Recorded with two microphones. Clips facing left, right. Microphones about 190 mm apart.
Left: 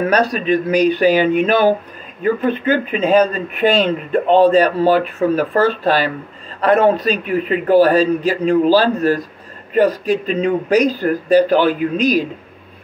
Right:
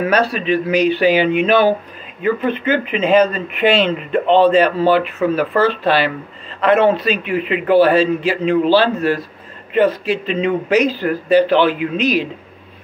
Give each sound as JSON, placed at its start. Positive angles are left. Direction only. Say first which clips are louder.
{"t": 0.3, "sound": "speech", "louder": "left 1 dB", "side_deg": 40}